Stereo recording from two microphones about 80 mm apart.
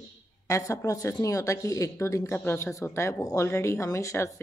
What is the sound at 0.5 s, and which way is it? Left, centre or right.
A woman's voice, left.